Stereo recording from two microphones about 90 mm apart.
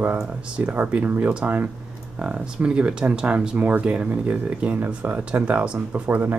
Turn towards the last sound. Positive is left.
turn(degrees=-20)  # may be behind; listen again after turning